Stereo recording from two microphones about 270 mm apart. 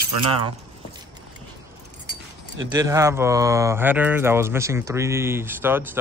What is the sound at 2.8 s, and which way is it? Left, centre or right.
Speech, centre.